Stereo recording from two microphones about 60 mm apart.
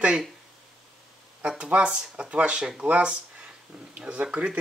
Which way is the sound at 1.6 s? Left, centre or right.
Centre.